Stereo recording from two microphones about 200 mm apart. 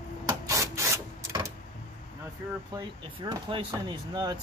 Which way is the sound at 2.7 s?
20° right (ahead or behind).